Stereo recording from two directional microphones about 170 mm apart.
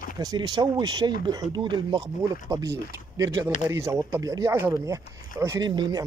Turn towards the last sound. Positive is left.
turn(degrees=-25)  # may be behind; listen again after turning